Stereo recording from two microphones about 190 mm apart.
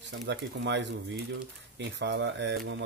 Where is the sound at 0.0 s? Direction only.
70° right (ahead or behind).